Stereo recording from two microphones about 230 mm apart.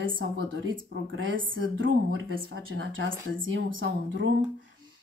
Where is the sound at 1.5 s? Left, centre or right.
Right.